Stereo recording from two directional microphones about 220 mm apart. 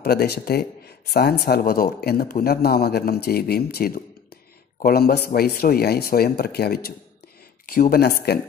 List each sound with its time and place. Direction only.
0.0 s a man's voice: 45° left (ahead or behind)